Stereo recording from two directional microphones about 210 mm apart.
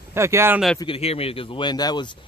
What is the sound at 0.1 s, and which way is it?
Speech, 10° right (ahead or behind).